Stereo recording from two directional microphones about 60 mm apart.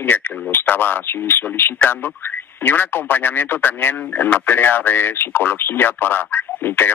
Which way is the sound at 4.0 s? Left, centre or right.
Left.